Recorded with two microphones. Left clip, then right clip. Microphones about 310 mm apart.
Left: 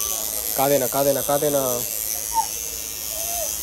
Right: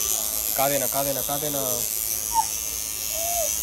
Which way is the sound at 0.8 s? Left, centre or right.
Left.